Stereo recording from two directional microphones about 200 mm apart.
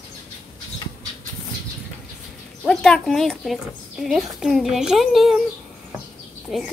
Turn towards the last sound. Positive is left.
turn(degrees=0)  # may be behind; listen again after turning